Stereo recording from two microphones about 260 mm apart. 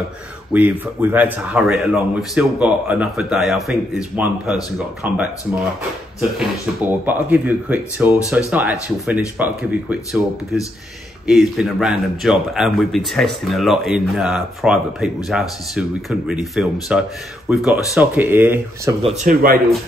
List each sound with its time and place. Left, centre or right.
0.5 s a man's voice: centre
6.3 s a man's voice: centre
19.0 s speech: right